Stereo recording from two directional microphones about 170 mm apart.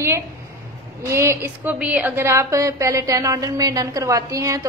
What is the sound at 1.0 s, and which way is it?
A woman's voice, 15° right (ahead or behind).